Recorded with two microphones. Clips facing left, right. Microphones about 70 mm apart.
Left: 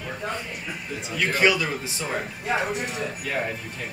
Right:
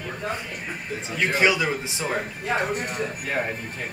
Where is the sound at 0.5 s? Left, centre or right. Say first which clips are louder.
Right 1 dB; right.